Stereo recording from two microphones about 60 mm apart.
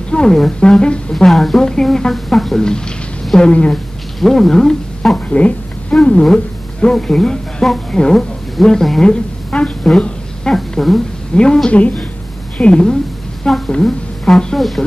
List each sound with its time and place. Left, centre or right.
0.1 s speech: centre
1.1 s a woman's voice: centre
5.3 s a woman's voice: left; by 11.0 s centre
11.3 s a woman's voice: centre